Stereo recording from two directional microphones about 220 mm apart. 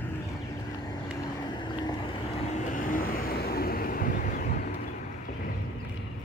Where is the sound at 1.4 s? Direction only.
20° left (ahead or behind); by 4.7 s 40° left (ahead or behind).